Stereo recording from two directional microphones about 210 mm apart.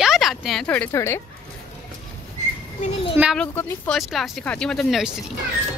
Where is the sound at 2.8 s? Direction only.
25° left (ahead or behind).